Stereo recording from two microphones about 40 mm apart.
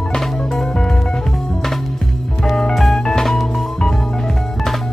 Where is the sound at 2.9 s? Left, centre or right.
Centre.